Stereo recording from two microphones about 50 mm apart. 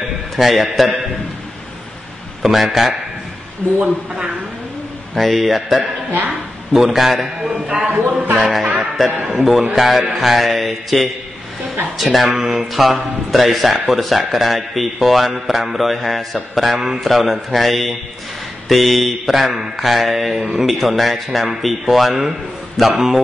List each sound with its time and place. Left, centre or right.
0.4 s speech: centre
2.4 s speech: centre
5.1 s speech: centre
7.5 s a man's voice: centre
7.8 s speech: right
8.4 s speech: centre